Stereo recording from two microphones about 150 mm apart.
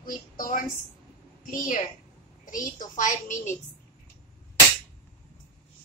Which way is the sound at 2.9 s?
60° left (ahead or behind).